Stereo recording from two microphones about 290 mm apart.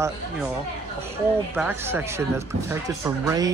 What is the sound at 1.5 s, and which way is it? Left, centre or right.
Speech, centre.